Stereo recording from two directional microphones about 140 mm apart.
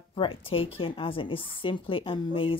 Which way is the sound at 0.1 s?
40° left (ahead or behind).